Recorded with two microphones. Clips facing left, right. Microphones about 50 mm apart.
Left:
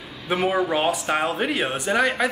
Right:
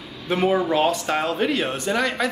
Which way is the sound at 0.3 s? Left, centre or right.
Centre.